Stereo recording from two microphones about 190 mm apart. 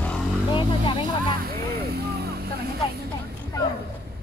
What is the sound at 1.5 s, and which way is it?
Vehicle, 55° right (ahead or behind).